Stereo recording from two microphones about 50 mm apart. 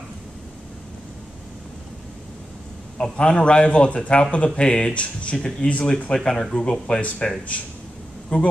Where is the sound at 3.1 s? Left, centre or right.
Left.